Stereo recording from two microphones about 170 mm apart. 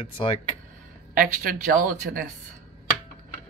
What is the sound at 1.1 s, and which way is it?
Speech, 55° right (ahead or behind).